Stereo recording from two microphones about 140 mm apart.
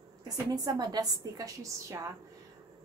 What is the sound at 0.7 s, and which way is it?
A woman's voice, 30° right (ahead or behind).